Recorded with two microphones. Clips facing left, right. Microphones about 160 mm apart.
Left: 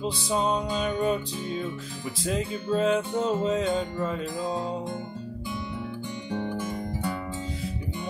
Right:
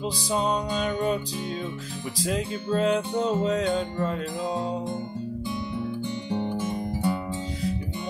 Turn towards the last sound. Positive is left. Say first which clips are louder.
# right 4 dB
turn(degrees=-25)  # may be behind; listen again after turning